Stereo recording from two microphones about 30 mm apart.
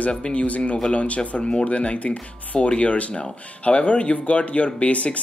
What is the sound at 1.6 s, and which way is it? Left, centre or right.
Speech, left.